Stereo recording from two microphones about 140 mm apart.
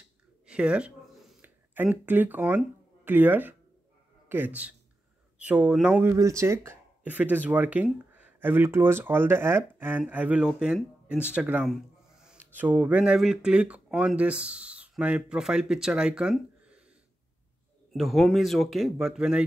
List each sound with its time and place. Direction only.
0.5 s a sound: 10° right (ahead or behind)
3.1 s speech: 15° right (ahead or behind)
6.0 s speech: 20° right (ahead or behind)
17.9 s speech: centre (ahead or behind)